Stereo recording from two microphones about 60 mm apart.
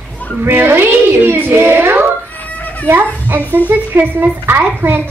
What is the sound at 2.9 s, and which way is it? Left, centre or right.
A child's voice, right.